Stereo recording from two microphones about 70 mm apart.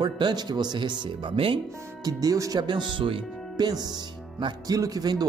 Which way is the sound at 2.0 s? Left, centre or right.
Right.